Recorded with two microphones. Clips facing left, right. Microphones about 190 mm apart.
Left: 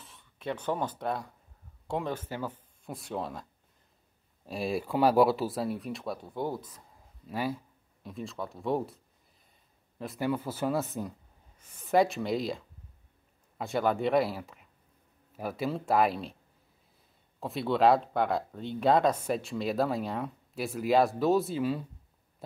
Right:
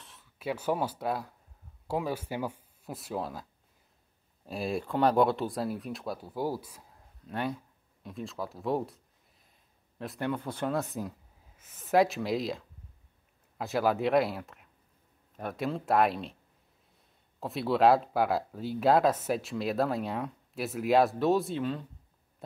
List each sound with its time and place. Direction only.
0.0 s speech: centre (ahead or behind)
4.5 s speech: centre (ahead or behind)
17.4 s speech: centre (ahead or behind)